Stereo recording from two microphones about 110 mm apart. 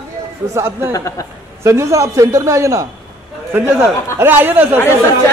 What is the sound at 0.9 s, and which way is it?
Speech, 30° left (ahead or behind).